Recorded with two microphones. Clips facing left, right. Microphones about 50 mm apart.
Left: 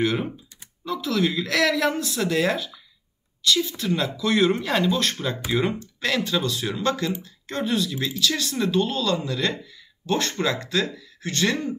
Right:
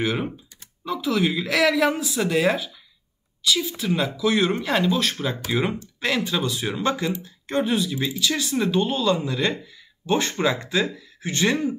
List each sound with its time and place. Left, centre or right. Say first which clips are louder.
0.0 s speech: left 1 dB; centre